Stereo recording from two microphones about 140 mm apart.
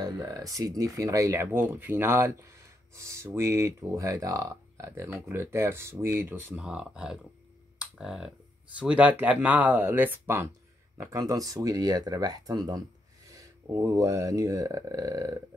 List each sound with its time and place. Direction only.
0.0 s speech: 25° right (ahead or behind); by 7.2 s 5° right (ahead or behind)
7.8 s computer keyboard: 5° right (ahead or behind)
8.7 s speech: 10° right (ahead or behind)